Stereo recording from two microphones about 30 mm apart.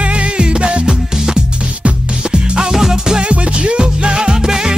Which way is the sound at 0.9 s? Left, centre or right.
Right.